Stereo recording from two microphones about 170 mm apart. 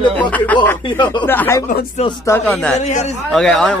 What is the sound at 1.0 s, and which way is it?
Speech, 25° left (ahead or behind).